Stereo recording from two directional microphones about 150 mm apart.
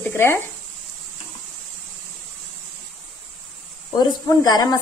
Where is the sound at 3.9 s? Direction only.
25° left (ahead or behind).